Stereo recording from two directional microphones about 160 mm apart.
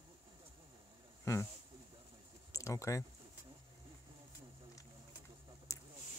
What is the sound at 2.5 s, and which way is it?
Speech, 20° left (ahead or behind).